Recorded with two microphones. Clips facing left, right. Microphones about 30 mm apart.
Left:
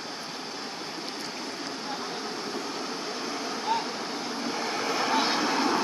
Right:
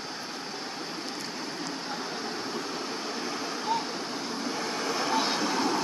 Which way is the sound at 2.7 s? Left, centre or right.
Centre.